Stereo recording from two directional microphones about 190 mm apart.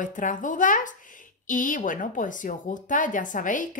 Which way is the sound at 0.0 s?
45° left (ahead or behind).